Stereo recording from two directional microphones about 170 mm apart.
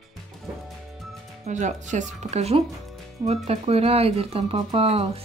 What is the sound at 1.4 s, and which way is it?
Speech, 45° right (ahead or behind).